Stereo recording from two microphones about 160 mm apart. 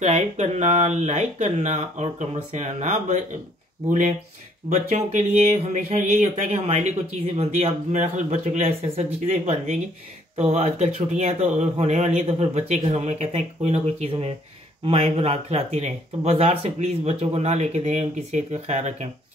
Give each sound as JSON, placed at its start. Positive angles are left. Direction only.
{"t": 0.0, "sound": "speech", "side_deg": -45}
{"t": 4.6, "sound": "speech", "side_deg": -45}